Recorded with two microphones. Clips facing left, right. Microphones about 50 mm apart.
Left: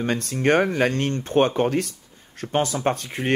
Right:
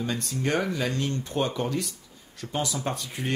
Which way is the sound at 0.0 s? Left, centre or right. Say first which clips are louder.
Left 7 dB; left.